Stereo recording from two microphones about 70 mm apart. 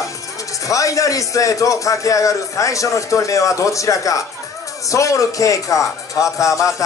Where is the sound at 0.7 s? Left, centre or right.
Left.